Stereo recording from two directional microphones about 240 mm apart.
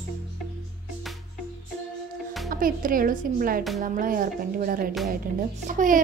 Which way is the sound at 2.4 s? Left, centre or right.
Right.